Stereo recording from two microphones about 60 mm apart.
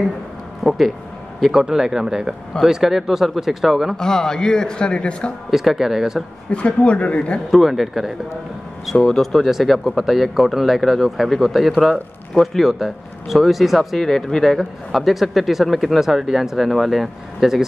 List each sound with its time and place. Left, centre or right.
0.7 s speech: centre
3.9 s a man's voice: centre
5.5 s speech: centre
6.5 s speech: centre
7.5 s speech: centre